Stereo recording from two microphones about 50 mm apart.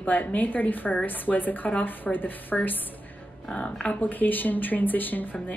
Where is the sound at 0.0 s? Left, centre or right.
Left.